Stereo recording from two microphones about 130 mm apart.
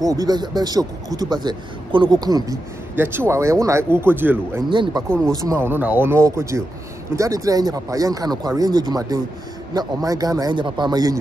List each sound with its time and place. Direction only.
0.0 s speech: 30° right (ahead or behind)
4.6 s speech: 35° right (ahead or behind)
5.2 s speech: 25° right (ahead or behind)